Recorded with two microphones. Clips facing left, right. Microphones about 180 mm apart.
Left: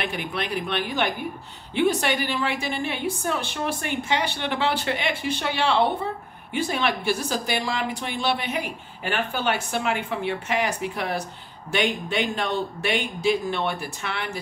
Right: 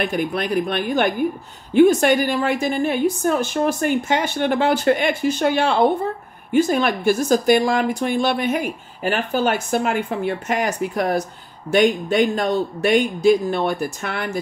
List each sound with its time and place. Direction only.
0.0 s a woman's voice: 45° right (ahead or behind)